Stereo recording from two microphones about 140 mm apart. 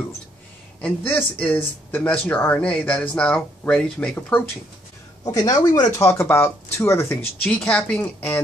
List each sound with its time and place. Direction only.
0.7 s speech: 10° left (ahead or behind)
5.2 s speech: 25° left (ahead or behind)
5.9 s speech: 15° left (ahead or behind)
7.4 s speech: 10° left (ahead or behind)